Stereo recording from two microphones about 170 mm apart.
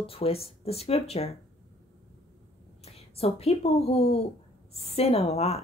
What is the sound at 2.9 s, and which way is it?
A woman's voice, 35° left (ahead or behind).